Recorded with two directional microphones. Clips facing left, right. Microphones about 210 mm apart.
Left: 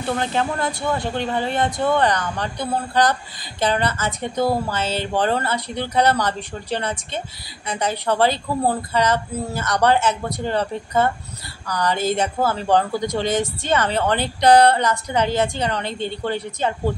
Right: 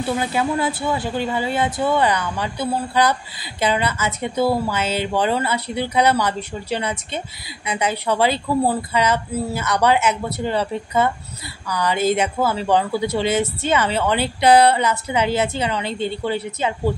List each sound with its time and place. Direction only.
0.1 s speech: 10° right (ahead or behind)